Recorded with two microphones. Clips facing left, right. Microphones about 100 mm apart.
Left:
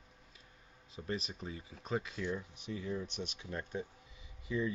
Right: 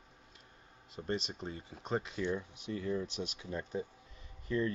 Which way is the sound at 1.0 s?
25° right (ahead or behind).